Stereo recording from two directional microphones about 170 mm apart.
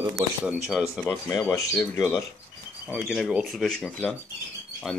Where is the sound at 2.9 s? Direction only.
5° right (ahead or behind).